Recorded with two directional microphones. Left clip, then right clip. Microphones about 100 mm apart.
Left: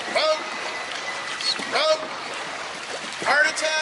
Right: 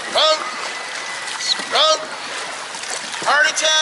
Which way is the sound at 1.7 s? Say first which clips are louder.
Right 6 dB; centre (ahead or behind).